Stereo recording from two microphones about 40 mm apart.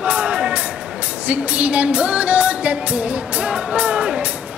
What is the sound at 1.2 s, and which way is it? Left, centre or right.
Music, right.